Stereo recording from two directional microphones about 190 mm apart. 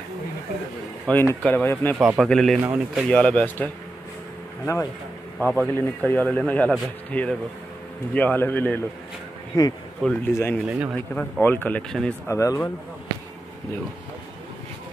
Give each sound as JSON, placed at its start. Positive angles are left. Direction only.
{"t": 1.0, "sound": "speech", "side_deg": 10}
{"t": 2.0, "sound": "a man's voice", "side_deg": 0}
{"t": 3.1, "sound": "speech", "side_deg": 5}
{"t": 5.5, "sound": "speech", "side_deg": 10}
{"t": 10.0, "sound": "a man's voice", "side_deg": 5}
{"t": 10.7, "sound": "a man's voice", "side_deg": -5}
{"t": 11.1, "sound": "speech", "side_deg": 10}